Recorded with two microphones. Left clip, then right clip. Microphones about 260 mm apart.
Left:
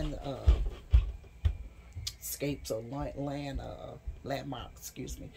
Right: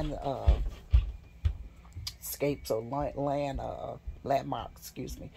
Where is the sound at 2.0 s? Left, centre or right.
Centre.